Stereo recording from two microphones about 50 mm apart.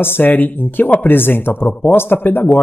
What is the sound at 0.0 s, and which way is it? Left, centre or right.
Speech, left.